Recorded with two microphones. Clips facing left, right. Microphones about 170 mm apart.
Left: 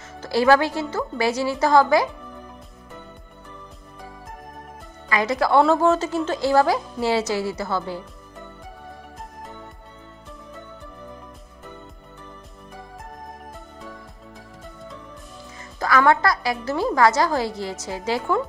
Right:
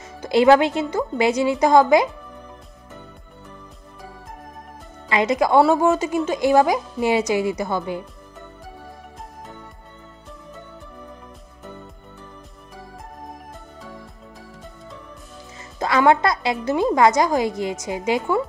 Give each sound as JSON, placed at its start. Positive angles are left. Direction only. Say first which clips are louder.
{"t": 0.2, "sound": "a woman's voice", "louder": "right 3 dB", "side_deg": -20}
{"t": 5.1, "sound": "a woman's voice", "louder": "right 2 dB", "side_deg": -20}
{"t": 15.8, "sound": "a woman's voice", "louder": "right 2 dB", "side_deg": -20}